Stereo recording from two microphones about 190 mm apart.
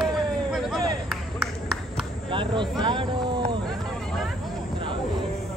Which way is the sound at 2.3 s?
25° right (ahead or behind).